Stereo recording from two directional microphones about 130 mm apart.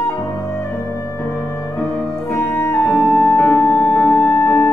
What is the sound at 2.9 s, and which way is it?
Music, 20° left (ahead or behind).